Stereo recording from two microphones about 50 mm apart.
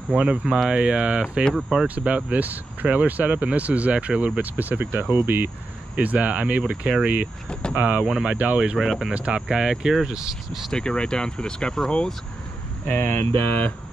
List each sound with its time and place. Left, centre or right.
0.1 s speech: right
5.9 s speech: right
6.6 s speech: centre
7.7 s speech: right
8.0 s speech: centre
8.3 s speech: right
8.7 s speech: centre
9.1 s speech: centre
10.7 s speech: centre
12.8 s speech: left